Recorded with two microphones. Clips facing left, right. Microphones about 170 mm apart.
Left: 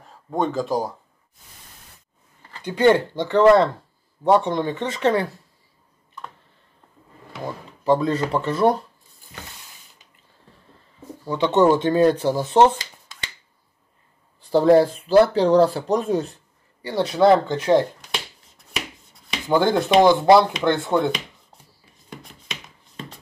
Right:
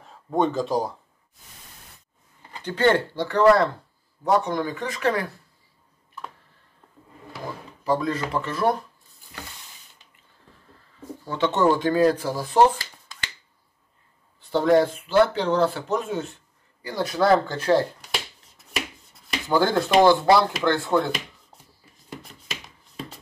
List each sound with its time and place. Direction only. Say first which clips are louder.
0.0 s speech: right 1 dB; centre (ahead or behind)
2.6 s speech: left 4 dB; 15° left (ahead or behind)
7.8 s speech: left 5 dB; 25° left (ahead or behind)
11.2 s speech: left 4 dB; 15° left (ahead or behind)
14.5 s speech: left 4 dB; 35° left (ahead or behind)
18.1 s finger snapping: even; centre (ahead or behind)
19.4 s speech: left 2 dB; 20° left (ahead or behind)
22.1 s a sound: even; 5° right (ahead or behind)